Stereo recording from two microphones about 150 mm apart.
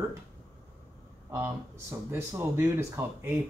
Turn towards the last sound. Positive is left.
turn(degrees=-20)  # may be behind; listen again after turning